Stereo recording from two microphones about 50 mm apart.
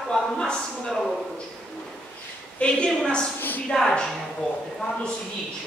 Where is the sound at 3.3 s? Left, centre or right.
Left.